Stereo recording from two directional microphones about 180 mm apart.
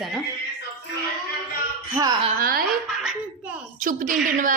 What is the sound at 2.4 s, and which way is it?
Speech, 55° right (ahead or behind).